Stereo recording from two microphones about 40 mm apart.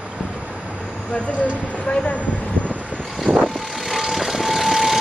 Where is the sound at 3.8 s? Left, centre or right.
Centre.